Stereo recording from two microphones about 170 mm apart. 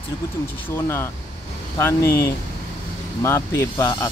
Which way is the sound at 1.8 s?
15° left (ahead or behind).